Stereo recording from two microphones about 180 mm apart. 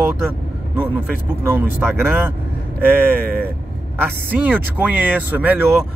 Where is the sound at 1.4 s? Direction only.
15° right (ahead or behind).